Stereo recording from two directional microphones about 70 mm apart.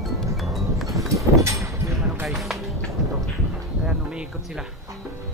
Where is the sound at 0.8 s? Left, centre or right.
Right.